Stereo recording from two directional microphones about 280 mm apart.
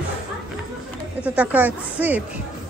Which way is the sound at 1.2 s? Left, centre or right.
Centre.